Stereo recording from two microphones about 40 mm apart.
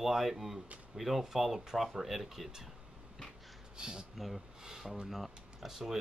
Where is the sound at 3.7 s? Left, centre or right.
Centre.